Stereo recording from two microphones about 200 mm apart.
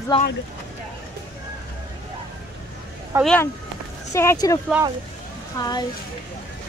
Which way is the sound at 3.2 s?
10° left (ahead or behind).